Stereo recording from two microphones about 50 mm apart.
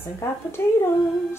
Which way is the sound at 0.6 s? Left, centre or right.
Left.